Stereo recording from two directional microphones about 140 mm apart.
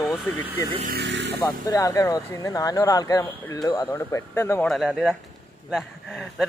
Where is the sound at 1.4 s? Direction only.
25° left (ahead or behind).